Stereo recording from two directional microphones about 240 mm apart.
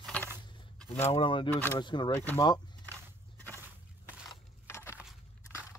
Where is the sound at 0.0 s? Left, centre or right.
Centre.